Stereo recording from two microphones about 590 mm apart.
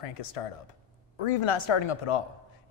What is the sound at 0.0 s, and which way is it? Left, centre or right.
Speech, left.